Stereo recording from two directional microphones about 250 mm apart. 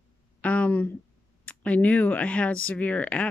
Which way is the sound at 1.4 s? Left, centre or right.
Centre.